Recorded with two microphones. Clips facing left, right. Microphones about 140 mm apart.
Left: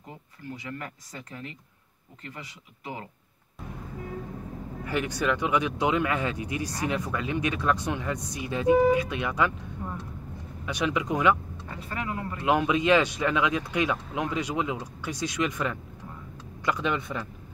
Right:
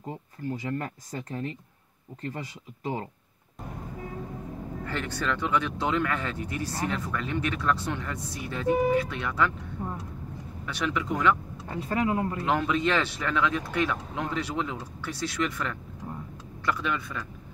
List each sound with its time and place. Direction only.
0.5 s speech: 35° right (ahead or behind)
4.8 s speech: 15° left (ahead or behind)
9.8 s vehicle: 25° right (ahead or behind)
10.6 s speech: 15° left (ahead or behind)
11.7 s speech: 30° right (ahead or behind)
12.4 s speech: 15° left (ahead or behind)